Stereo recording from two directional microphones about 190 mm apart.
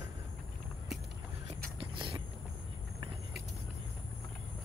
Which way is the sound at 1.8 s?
25° right (ahead or behind).